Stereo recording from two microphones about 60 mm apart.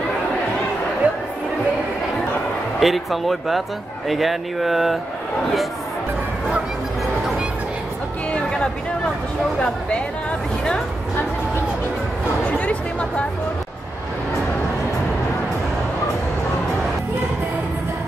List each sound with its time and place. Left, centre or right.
1.0 s music: right
2.8 s a sound: centre
8.3 s chatter: centre
12.4 s music: left